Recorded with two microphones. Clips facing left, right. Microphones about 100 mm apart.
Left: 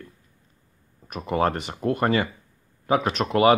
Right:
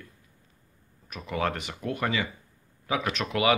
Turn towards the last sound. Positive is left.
turn(degrees=35)  # may be behind; listen again after turning